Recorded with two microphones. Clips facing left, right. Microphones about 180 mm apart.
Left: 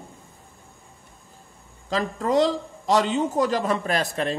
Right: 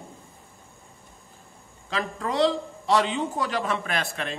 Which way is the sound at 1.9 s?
40° left (ahead or behind).